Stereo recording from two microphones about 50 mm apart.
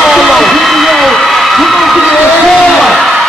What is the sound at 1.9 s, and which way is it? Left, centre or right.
Speech, centre.